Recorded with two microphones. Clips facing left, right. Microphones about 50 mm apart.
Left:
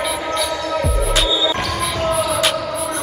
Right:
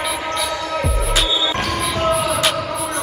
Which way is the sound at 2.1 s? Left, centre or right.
Centre.